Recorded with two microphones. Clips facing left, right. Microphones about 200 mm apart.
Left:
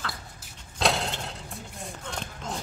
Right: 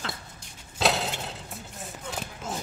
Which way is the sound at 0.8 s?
Centre (ahead or behind).